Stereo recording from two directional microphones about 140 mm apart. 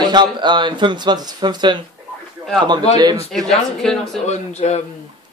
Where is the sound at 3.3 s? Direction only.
5° left (ahead or behind).